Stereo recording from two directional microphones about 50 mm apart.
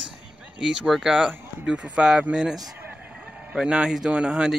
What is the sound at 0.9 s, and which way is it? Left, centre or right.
Speech, centre.